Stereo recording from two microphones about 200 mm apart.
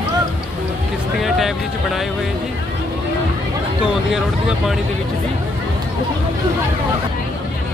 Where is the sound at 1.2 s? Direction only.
Centre (ahead or behind).